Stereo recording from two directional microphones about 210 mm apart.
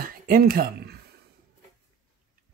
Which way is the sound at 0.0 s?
45° right (ahead or behind).